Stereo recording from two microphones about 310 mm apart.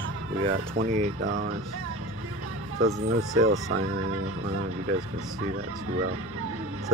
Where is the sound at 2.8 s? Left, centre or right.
Right.